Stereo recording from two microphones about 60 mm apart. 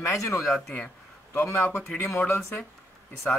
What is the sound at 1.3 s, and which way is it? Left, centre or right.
Speech, left.